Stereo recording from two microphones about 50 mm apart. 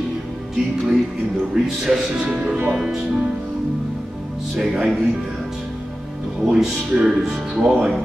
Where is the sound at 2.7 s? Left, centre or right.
Centre.